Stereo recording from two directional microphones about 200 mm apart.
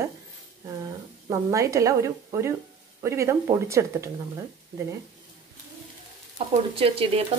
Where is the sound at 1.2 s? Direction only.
15° right (ahead or behind).